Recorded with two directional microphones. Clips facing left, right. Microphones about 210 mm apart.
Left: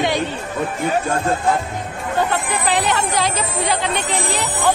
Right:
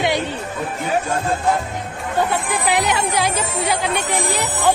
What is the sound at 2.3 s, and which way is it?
Speech, 10° right (ahead or behind).